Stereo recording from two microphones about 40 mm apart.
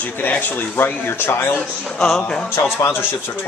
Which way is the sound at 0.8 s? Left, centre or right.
Left.